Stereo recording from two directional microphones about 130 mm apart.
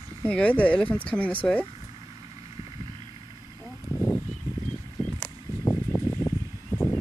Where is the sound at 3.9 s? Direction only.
25° left (ahead or behind).